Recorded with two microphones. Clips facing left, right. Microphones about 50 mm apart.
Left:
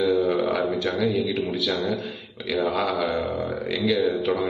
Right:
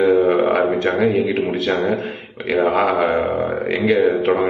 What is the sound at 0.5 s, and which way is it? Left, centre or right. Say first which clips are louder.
A man's voice: right 7 dB; right.